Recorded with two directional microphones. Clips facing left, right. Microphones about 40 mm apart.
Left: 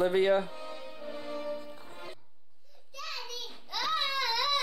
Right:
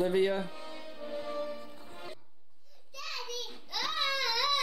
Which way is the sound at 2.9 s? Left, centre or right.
Centre.